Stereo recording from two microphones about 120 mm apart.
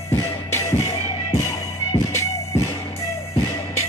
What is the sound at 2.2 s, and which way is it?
Music, 25° left (ahead or behind).